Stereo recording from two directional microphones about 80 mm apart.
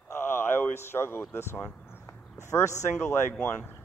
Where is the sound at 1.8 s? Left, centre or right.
Left.